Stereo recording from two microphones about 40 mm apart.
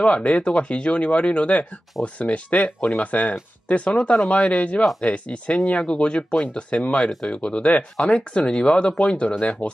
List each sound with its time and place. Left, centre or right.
0.0 s speech: left
9.4 s speech: left